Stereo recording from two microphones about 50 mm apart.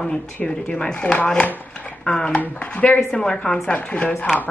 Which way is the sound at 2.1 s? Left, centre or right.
Centre.